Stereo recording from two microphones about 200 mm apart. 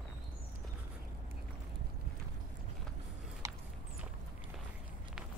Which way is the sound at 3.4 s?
15° right (ahead or behind).